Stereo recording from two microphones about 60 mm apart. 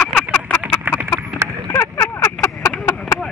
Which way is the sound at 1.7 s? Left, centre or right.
Left.